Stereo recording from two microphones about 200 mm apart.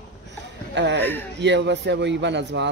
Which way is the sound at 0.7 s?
60° right (ahead or behind).